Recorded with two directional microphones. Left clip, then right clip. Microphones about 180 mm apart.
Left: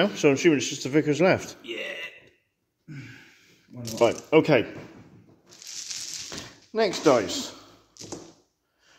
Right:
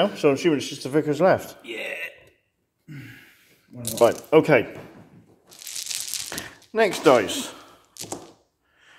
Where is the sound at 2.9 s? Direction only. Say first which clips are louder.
Right 1 dB; 15° right (ahead or behind).